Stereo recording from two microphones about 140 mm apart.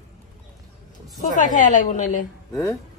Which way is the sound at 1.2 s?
65° left (ahead or behind).